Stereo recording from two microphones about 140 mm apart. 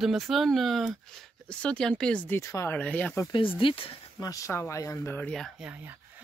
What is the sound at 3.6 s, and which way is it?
Speech, 40° left (ahead or behind).